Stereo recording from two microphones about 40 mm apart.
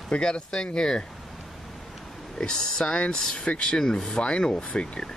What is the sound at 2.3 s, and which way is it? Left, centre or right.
Speech, left.